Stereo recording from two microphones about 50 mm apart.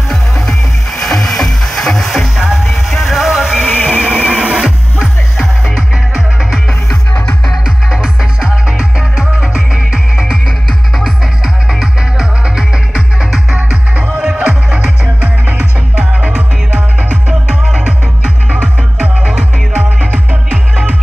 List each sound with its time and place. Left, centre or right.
0.1 s music: centre
7.6 s music: centre
11.0 s music: centre
13.6 s music: right
17.8 s music: right